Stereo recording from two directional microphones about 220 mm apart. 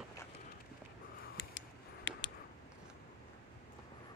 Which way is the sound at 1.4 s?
55° left (ahead or behind).